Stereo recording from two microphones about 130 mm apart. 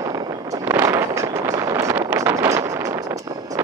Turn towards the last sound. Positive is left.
turn(degrees=-25)  # may be behind; listen again after turning